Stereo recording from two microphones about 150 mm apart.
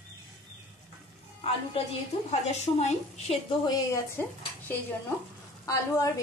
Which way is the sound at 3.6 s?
20° left (ahead or behind).